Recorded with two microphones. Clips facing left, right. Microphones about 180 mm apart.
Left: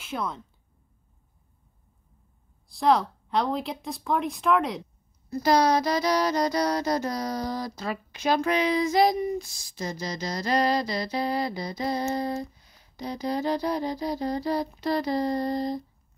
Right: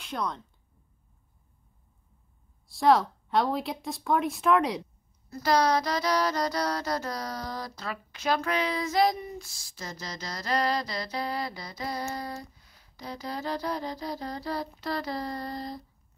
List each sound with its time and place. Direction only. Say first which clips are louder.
0.0 s speech: left 1 dB; 5° left (ahead or behind)
2.7 s speech: even; centre (ahead or behind)
5.3 s child singing: left 3 dB; 15° left (ahead or behind)